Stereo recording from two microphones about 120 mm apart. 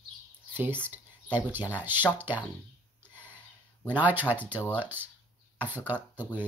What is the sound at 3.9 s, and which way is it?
Speech, 15° right (ahead or behind).